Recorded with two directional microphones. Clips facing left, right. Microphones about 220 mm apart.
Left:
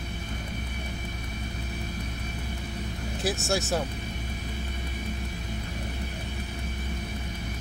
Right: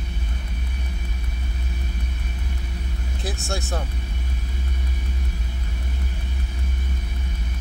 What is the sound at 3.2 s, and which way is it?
Vehicle, centre (ahead or behind).